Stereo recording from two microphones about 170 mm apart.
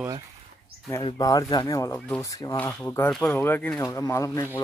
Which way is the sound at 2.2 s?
20° left (ahead or behind).